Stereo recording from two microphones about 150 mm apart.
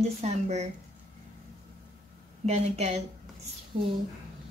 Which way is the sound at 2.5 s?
45° right (ahead or behind).